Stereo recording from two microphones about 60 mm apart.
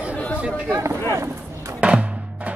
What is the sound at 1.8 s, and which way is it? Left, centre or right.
Music, right.